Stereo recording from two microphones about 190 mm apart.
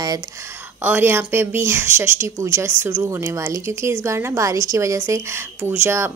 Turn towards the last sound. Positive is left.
turn(degrees=-10)  # may be behind; listen again after turning